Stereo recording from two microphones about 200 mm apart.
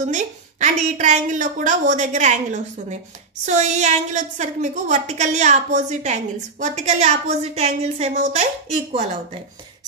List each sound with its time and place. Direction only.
0.0 s a woman's voice: 35° right (ahead or behind)